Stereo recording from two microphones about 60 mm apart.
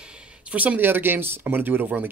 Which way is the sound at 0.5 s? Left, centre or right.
Right.